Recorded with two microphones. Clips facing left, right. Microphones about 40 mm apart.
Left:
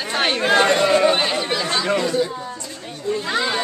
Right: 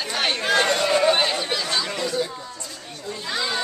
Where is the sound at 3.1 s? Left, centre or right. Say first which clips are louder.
Left 6 dB; left.